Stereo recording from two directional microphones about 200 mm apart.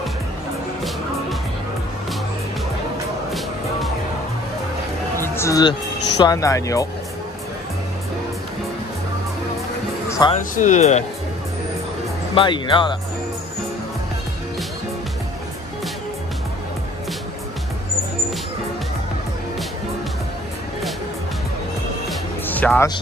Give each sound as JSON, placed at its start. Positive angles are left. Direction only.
{"t": 5.1, "sound": "speech", "side_deg": 10}
{"t": 10.0, "sound": "music", "side_deg": 15}
{"t": 10.5, "sound": "speech", "side_deg": 35}
{"t": 12.4, "sound": "speech", "side_deg": 25}
{"t": 22.5, "sound": "speech", "side_deg": 10}